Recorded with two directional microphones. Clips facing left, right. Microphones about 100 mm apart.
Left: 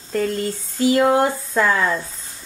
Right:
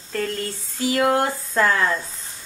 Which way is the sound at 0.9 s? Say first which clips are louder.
Left 2 dB; 15° left (ahead or behind).